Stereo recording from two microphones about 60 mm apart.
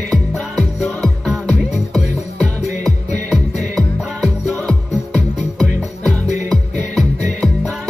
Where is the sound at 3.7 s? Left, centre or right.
Centre.